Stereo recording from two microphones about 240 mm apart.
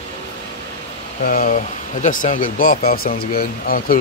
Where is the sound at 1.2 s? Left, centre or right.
Left.